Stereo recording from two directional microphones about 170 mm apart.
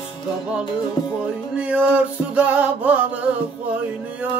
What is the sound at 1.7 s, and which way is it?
Music, 10° right (ahead or behind).